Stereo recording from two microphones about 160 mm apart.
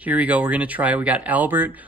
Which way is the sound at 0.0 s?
10° right (ahead or behind).